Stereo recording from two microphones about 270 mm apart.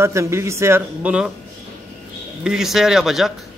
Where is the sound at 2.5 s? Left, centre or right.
Centre.